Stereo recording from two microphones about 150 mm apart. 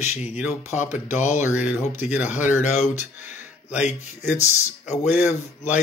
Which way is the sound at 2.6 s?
50° left (ahead or behind).